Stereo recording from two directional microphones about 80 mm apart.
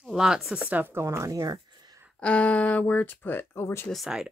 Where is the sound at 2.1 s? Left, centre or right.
Centre.